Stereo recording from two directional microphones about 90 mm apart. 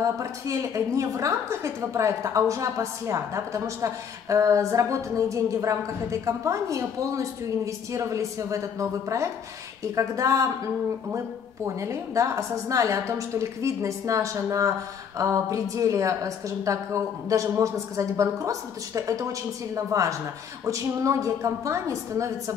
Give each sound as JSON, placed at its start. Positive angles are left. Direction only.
{"t": 0.0, "sound": "a woman's voice", "side_deg": -35}
{"t": 11.6, "sound": "a woman's voice", "side_deg": -35}